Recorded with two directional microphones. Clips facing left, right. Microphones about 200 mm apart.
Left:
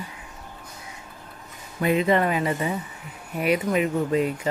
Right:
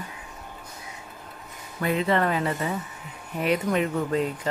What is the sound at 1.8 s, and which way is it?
A woman's voice, 15° left (ahead or behind).